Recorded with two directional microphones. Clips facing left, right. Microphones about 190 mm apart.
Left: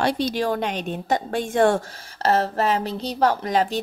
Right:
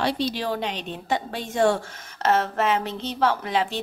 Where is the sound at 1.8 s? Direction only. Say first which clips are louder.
Left 1 dB; 35° left (ahead or behind).